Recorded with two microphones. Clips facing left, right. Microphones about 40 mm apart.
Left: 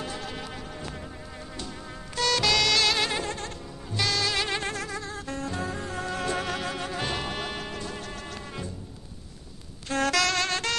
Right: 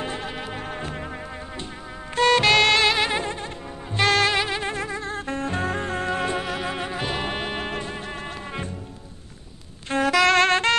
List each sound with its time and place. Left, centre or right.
0.0 s music: right
0.6 s music: right
2.1 s music: right
3.9 s music: right
4.5 s music: centre
4.7 s music: right
6.3 s music: centre
7.2 s music: right
9.9 s music: centre
10.2 s music: right